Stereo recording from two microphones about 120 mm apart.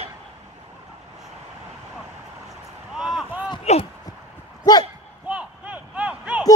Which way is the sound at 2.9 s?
5° right (ahead or behind).